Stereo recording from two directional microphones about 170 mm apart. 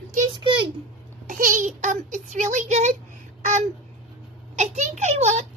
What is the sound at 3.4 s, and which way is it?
Babbling, 45° right (ahead or behind).